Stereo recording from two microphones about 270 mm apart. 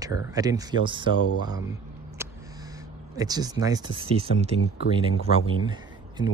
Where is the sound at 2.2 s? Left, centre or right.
Centre.